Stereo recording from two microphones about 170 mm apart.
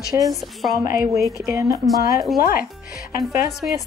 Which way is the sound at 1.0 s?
20° right (ahead or behind).